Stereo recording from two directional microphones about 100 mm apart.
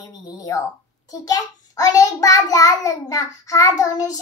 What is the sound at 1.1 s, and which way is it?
A child's voice, 35° left (ahead or behind).